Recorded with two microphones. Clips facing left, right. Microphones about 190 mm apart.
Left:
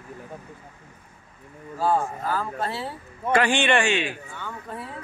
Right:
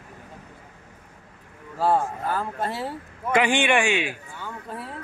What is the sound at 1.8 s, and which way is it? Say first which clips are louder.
Speech: right 1 dB; 25° right (ahead or behind).